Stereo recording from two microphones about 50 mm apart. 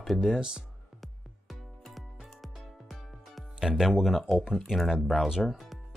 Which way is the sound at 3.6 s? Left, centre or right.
Centre.